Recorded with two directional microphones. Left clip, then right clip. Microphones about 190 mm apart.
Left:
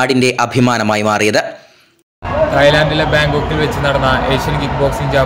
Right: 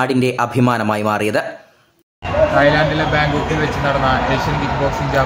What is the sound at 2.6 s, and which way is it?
Speech, 35° left (ahead or behind).